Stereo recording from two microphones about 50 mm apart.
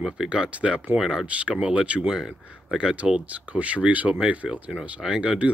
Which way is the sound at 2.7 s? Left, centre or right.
Right.